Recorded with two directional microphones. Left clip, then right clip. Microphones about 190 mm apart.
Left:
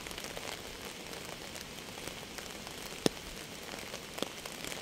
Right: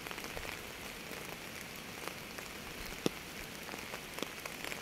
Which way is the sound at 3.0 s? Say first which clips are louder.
Left 5 dB; 40° left (ahead or behind).